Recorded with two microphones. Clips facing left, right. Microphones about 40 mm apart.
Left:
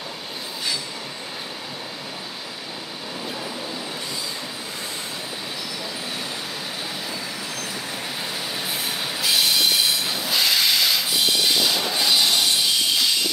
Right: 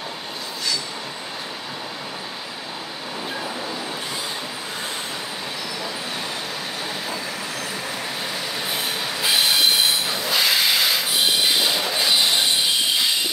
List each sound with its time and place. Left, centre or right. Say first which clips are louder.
8.6 s train: right 3 dB; right